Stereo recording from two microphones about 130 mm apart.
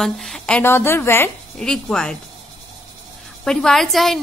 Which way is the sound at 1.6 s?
5° left (ahead or behind).